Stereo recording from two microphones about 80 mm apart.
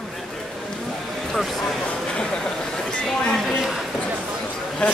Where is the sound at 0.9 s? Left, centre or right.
Centre.